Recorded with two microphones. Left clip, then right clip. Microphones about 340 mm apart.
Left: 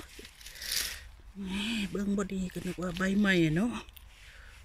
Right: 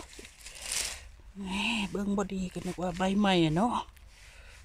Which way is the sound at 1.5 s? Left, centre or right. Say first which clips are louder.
Right 4 dB; centre.